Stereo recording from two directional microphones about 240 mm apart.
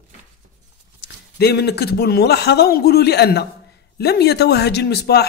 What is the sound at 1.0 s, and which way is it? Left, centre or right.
A man's voice, left.